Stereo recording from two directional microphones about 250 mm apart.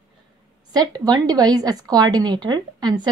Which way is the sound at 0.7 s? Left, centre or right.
Centre.